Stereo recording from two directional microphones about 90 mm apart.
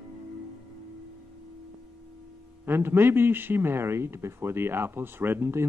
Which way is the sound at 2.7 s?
25° right (ahead or behind).